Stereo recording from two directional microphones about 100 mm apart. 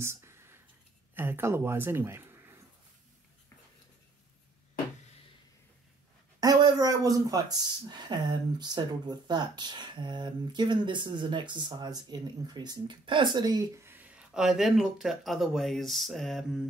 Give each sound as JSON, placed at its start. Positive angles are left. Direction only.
{"t": 0.0, "sound": "whispering", "side_deg": -25}
{"t": 1.1, "sound": "speech", "side_deg": -20}
{"t": 6.4, "sound": "speech", "side_deg": -40}
{"t": 13.7, "sound": "speech", "side_deg": -20}